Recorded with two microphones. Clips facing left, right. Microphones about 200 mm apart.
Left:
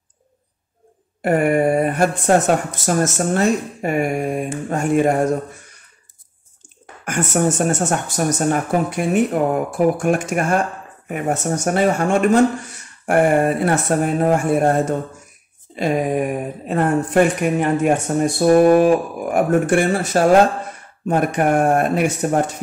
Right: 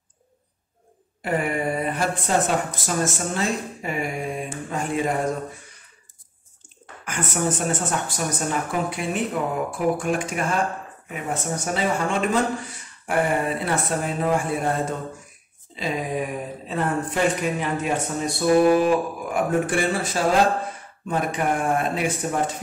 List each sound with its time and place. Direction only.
1.2 s speech: 50° left (ahead or behind)
7.1 s a woman's voice: 45° left (ahead or behind); by 11.6 s 65° left (ahead or behind)
11.6 s speech: 50° left (ahead or behind)